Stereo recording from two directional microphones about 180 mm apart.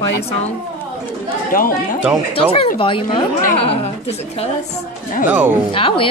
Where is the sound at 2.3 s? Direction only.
30° left (ahead or behind).